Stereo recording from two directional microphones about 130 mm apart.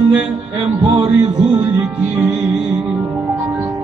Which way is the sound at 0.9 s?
45° right (ahead or behind).